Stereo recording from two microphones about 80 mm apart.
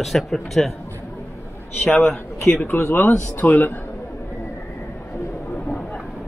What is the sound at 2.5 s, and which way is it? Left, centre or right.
Speech, centre.